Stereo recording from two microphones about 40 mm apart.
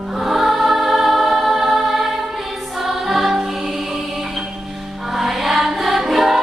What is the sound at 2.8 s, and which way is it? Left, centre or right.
Music, centre.